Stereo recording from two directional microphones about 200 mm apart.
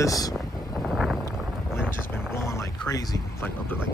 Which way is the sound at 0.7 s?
Centre (ahead or behind).